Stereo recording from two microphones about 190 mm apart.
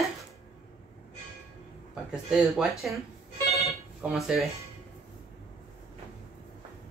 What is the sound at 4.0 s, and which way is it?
Speech, centre (ahead or behind).